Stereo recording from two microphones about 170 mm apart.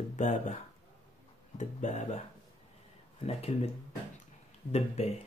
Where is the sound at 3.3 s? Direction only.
40° left (ahead or behind).